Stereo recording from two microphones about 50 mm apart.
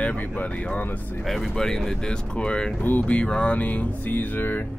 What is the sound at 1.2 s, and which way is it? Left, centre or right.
Speech, centre.